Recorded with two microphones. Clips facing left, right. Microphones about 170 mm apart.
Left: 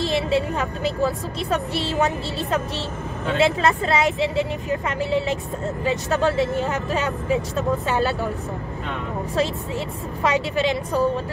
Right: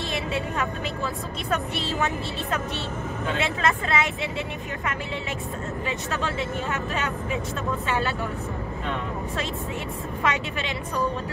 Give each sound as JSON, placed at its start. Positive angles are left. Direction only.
{"t": 0.0, "sound": "speech", "side_deg": 35}
{"t": 10.2, "sound": "speech", "side_deg": 35}